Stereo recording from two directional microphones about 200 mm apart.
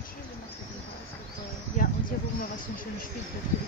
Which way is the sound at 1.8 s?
40° left (ahead or behind).